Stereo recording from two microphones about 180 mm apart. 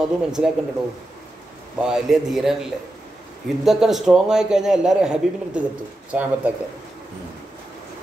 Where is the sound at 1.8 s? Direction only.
5° right (ahead or behind).